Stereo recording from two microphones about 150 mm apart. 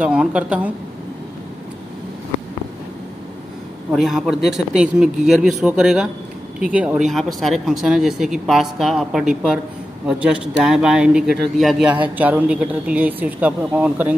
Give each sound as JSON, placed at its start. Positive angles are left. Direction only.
{"t": 0.0, "sound": "speech", "side_deg": -5}
{"t": 3.9, "sound": "speech", "side_deg": 0}